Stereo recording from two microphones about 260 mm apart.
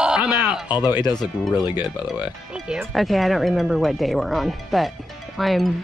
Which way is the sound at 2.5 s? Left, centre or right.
Centre.